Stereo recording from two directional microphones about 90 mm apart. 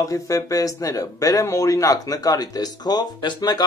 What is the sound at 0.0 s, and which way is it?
Speech, 40° left (ahead or behind).